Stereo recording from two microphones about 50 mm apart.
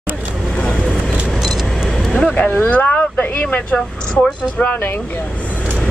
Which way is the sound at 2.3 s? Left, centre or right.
Left.